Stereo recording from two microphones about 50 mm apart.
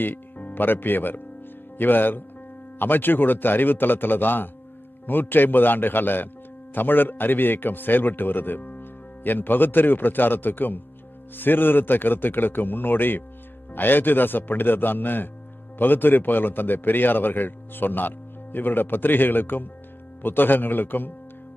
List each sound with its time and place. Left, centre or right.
0.0 s a man's voice: left